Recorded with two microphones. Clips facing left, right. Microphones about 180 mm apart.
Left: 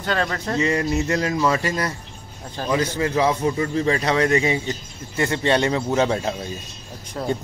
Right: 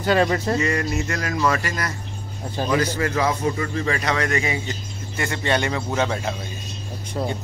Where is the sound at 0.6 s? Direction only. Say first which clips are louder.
Left 2 dB; 25° left (ahead or behind).